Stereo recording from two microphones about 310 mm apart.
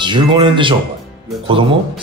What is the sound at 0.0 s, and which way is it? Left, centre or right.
Speech, centre.